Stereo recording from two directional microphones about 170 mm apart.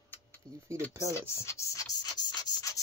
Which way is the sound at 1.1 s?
15° left (ahead or behind).